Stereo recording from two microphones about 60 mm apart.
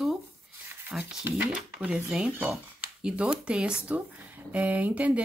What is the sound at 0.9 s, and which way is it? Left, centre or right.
Speech, centre.